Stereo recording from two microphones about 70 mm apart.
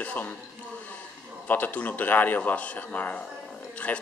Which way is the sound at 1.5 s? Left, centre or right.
Left.